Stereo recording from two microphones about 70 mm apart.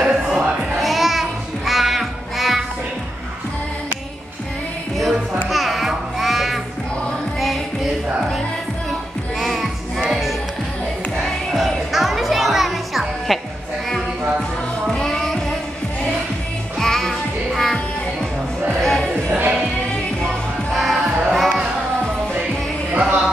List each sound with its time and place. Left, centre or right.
0.0 s a sound: centre
1.7 s music: centre
5.5 s music: centre
9.4 s music: centre
14.9 s music: centre
16.8 s music: centre
20.7 s music: centre
22.9 s music: centre